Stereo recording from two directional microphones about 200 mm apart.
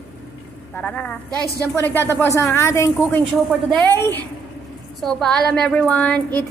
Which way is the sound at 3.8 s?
10° left (ahead or behind).